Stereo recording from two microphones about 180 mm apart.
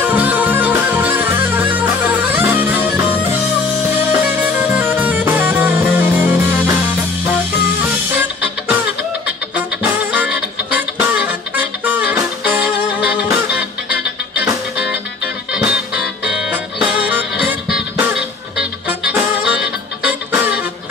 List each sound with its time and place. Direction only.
0.0 s music: 10° right (ahead or behind)
4.1 s music: 10° right (ahead or behind)
10.1 s music: 10° right (ahead or behind)
16.3 s music: 5° right (ahead or behind)